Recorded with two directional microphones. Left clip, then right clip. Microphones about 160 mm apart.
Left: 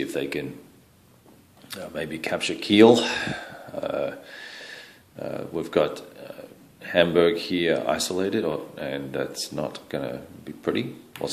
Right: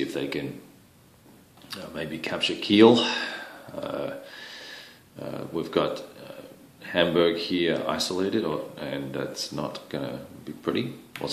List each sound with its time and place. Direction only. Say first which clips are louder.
0.0 s speech: left 1 dB; 30° left (ahead or behind)
1.7 s speech: left 2 dB; 30° left (ahead or behind)